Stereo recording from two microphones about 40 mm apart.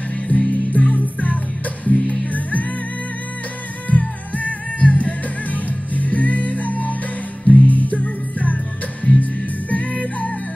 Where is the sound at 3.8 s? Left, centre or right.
Left.